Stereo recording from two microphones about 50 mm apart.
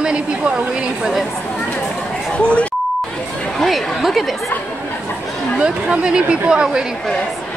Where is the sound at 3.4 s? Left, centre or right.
Centre.